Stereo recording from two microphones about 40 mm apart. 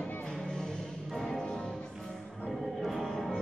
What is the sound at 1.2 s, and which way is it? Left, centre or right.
Music, centre.